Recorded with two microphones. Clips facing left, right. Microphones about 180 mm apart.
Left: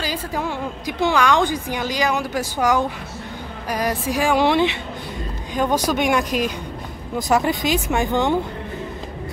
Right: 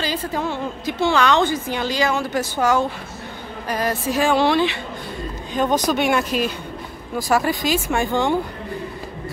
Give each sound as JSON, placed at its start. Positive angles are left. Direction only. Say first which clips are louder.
{"t": 0.0, "sound": "a woman's voice", "louder": "right 1 dB", "side_deg": 10}